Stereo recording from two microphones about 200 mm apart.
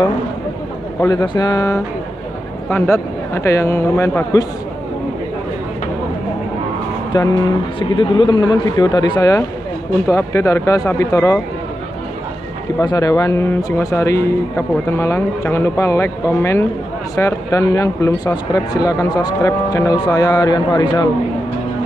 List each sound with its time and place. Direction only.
1.0 s speech: 20° left (ahead or behind)
7.9 s speech: 25° left (ahead or behind)
12.8 s speech: 20° left (ahead or behind)